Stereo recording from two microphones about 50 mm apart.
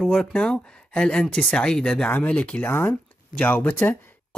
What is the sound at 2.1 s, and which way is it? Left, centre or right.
Speech, left.